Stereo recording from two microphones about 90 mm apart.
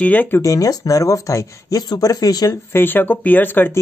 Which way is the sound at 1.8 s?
45° left (ahead or behind).